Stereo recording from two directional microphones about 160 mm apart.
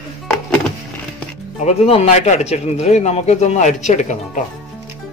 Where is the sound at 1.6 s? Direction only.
40° left (ahead or behind).